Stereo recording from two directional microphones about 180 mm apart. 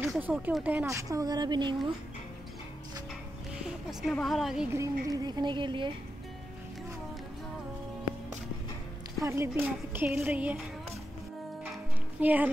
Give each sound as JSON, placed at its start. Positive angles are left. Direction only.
{"t": 0.1, "sound": "speech", "side_deg": -5}
{"t": 3.6, "sound": "a woman's voice", "side_deg": 0}
{"t": 4.7, "sound": "speech", "side_deg": -20}
{"t": 9.2, "sound": "speech", "side_deg": -15}
{"t": 12.2, "sound": "speech", "side_deg": -10}